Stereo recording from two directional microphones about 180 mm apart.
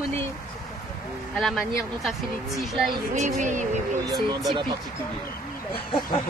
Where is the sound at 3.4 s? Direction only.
45° right (ahead or behind).